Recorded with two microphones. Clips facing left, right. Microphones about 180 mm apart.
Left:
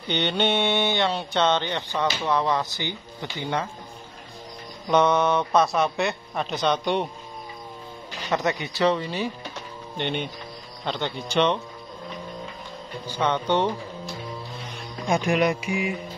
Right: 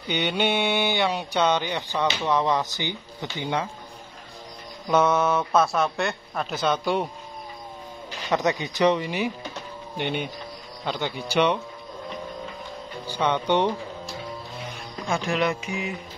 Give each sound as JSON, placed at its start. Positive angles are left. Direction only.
{"t": 0.1, "sound": "speech", "side_deg": -10}
{"t": 4.8, "sound": "speech", "side_deg": -5}
{"t": 8.3, "sound": "speech", "side_deg": -20}
{"t": 13.0, "sound": "speech", "side_deg": -10}
{"t": 15.0, "sound": "music", "side_deg": 15}